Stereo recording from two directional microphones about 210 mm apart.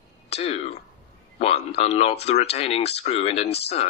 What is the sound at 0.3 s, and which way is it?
Speech, 30° left (ahead or behind).